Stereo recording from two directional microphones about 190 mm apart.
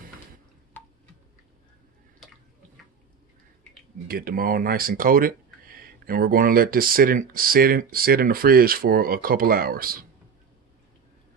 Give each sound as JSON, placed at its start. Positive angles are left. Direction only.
{"t": 4.1, "sound": "speech", "side_deg": -50}